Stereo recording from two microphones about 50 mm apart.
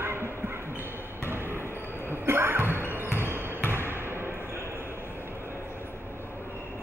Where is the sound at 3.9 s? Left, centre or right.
Right.